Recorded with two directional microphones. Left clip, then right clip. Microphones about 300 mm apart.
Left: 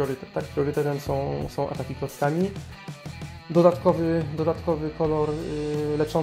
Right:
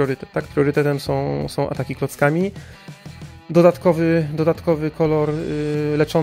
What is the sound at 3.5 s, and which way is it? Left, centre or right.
Speech, right.